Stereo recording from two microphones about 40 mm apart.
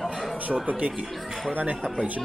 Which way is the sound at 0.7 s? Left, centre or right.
Right.